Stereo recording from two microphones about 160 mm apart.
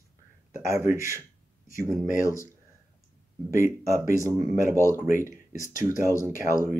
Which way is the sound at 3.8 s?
20° right (ahead or behind).